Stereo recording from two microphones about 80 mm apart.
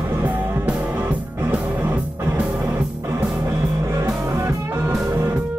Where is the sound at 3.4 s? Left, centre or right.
Right.